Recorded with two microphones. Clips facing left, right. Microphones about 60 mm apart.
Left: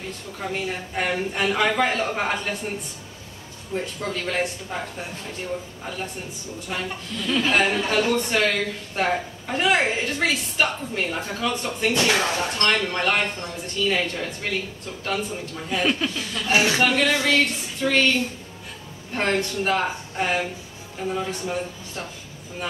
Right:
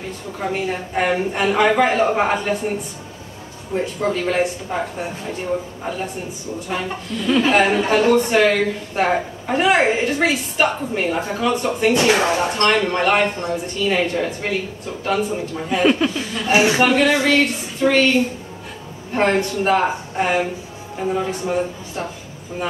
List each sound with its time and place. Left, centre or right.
0.4 s a woman's voice: centre
3.7 s a woman's voice: centre